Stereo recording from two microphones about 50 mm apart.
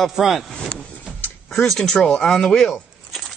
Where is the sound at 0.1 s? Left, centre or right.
Centre.